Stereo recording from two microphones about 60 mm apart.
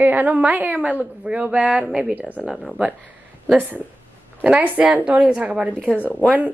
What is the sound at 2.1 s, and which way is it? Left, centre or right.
Speech, right.